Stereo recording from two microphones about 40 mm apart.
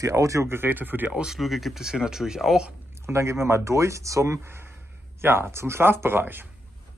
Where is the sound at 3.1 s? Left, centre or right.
Right.